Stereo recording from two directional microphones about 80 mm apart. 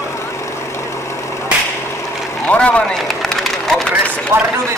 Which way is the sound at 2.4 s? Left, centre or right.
Centre.